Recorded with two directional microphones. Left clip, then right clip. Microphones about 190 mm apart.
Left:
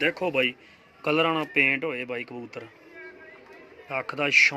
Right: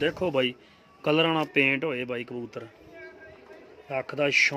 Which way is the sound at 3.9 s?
35° right (ahead or behind).